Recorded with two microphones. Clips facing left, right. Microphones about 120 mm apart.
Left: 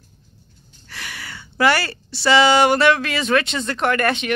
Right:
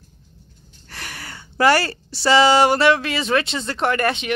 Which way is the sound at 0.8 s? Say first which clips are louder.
Even; 40° right (ahead or behind).